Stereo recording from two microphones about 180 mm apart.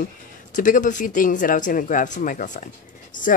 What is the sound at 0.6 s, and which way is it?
Speech, 45° left (ahead or behind).